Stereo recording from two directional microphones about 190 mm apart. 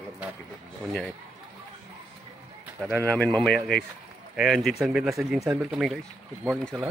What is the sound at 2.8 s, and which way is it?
Speech, 5° left (ahead or behind).